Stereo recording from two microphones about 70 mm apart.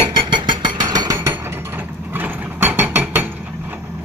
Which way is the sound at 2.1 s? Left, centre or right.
Right.